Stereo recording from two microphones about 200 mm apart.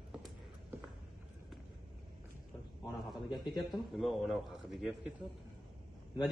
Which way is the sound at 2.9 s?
Centre (ahead or behind).